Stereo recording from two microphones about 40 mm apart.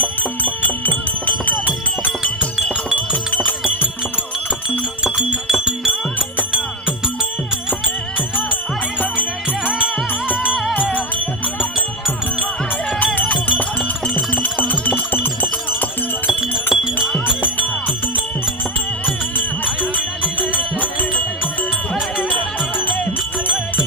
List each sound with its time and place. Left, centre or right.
0.4 s music: left
4.6 s music: centre
10.7 s music: left
13.3 s music: left
16.3 s music: centre
19.6 s music: left